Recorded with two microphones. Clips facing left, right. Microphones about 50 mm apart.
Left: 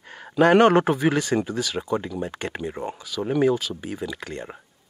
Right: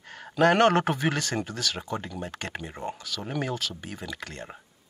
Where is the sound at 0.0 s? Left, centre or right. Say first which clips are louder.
Left 3 dB; centre.